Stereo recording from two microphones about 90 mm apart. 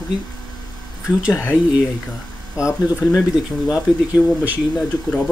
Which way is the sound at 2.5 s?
35° left (ahead or behind).